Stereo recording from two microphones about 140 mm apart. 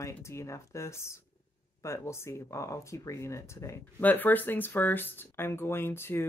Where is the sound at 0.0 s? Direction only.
20° left (ahead or behind).